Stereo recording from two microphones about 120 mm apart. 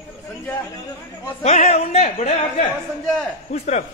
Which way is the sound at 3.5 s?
65° left (ahead or behind).